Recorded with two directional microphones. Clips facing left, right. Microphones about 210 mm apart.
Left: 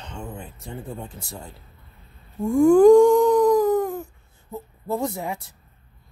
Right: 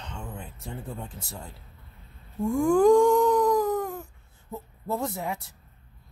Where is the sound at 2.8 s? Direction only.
Centre (ahead or behind).